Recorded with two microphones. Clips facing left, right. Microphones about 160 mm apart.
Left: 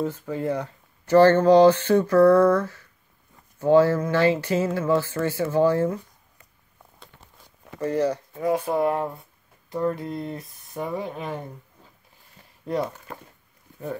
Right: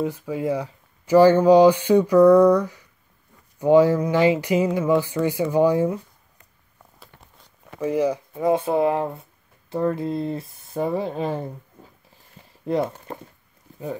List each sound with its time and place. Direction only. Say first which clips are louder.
0.0 s speech: right 2 dB; 10° right (ahead or behind)
7.8 s speech: right 2 dB; 10° right (ahead or behind)
8.4 s speech: right 3 dB; 25° right (ahead or behind)
12.6 s speech: right 3 dB; 25° right (ahead or behind)